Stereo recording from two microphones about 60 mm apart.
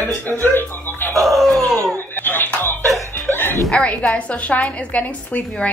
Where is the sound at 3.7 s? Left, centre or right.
Centre.